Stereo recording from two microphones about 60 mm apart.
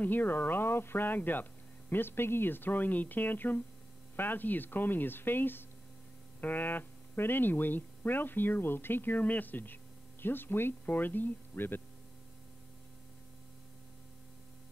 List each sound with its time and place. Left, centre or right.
0.0 s speech: left